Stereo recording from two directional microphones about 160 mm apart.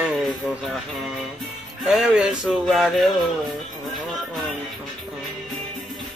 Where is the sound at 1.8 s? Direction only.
Centre (ahead or behind).